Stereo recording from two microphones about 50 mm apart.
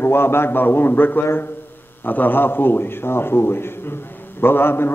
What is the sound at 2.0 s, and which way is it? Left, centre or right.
A man's voice, left.